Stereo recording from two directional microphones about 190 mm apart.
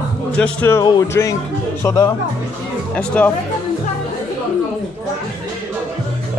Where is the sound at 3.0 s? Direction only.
5° left (ahead or behind).